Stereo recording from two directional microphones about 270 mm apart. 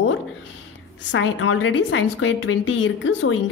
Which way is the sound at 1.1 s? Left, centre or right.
Left.